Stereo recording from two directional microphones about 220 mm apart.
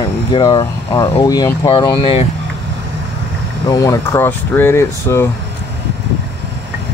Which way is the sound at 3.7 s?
15° left (ahead or behind).